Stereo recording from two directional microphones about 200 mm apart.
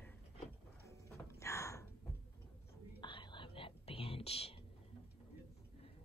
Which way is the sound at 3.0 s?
25° left (ahead or behind).